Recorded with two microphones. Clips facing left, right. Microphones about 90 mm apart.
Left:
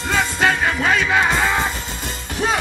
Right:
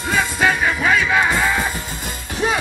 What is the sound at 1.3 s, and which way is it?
Music, 25° left (ahead or behind).